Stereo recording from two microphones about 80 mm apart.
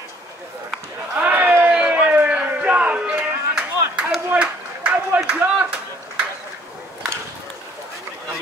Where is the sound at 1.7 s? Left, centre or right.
Centre.